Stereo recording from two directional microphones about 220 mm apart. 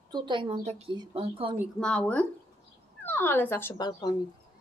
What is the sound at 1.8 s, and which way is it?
A woman's voice, 5° left (ahead or behind).